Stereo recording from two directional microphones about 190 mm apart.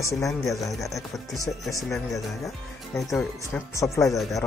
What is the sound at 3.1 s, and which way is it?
Speech, centre (ahead or behind).